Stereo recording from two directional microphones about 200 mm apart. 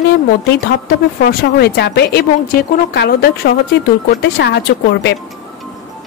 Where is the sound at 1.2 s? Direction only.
50° left (ahead or behind).